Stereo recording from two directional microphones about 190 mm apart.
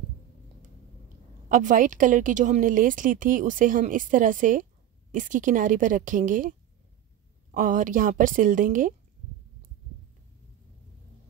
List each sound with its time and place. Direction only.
1.5 s a woman's voice: 45° right (ahead or behind)
7.5 s a woman's voice: 45° right (ahead or behind)